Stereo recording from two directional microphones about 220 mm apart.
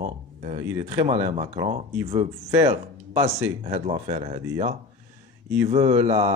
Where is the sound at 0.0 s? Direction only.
30° right (ahead or behind).